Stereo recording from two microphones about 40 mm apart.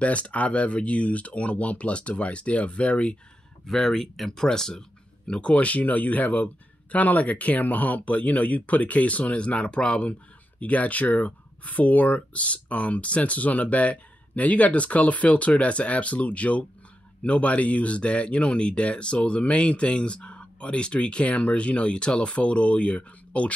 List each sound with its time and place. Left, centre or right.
0.0 s speech: left
3.6 s speech: centre
4.3 s speech: centre
5.4 s speech: left
10.6 s speech: left